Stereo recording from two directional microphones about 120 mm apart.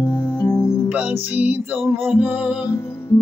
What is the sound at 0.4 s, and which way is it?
Music, 30° left (ahead or behind).